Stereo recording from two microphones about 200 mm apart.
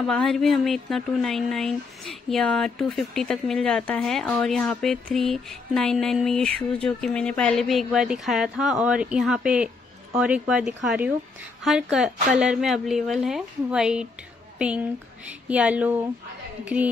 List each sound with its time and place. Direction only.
0.0 s speech: 5° left (ahead or behind)